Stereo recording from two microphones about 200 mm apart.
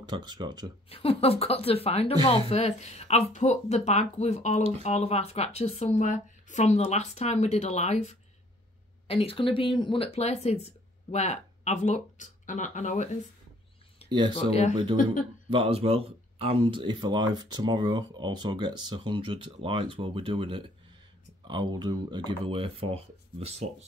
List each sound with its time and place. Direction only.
0.0 s speech: 20° right (ahead or behind)
0.8 s a woman's voice: 30° left (ahead or behind)
14.0 s speech: 20° right (ahead or behind)
14.5 s a woman's voice: 35° left (ahead or behind)
14.8 s speech: 25° right (ahead or behind)